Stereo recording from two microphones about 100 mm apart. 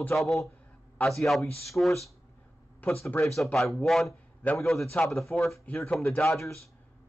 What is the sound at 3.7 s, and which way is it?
A man's voice, 5° left (ahead or behind).